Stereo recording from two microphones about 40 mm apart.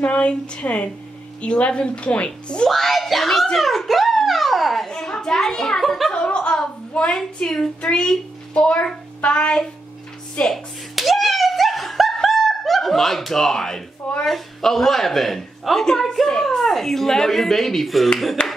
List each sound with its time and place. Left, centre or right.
0.0 s a woman's voice: left
2.7 s a woman's voice: centre
3.5 s dog: centre
4.8 s speech: centre
6.1 s a woman's voice: left
10.5 s a sound: centre
14.2 s a woman's voice: centre
18.4 s a sound: left